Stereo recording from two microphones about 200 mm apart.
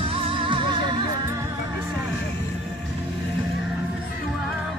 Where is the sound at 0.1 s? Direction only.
25° right (ahead or behind).